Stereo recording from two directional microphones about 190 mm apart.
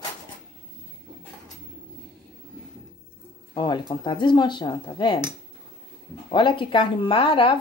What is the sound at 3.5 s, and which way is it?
A woman's voice, 25° left (ahead or behind).